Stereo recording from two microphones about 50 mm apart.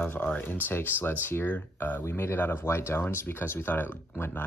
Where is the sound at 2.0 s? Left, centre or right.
Left.